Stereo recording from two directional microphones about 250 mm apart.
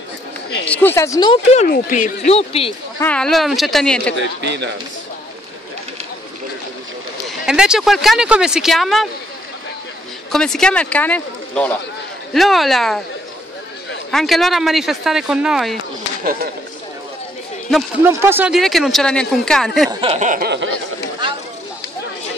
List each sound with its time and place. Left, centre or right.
0.7 s speech: centre; by 2.7 s left
3.0 s speech: centre
4.4 s a man's voice: right
7.4 s speech: centre
10.3 s speech: centre
14.1 s speech: centre
17.6 s speech: centre
19.9 s a sound: right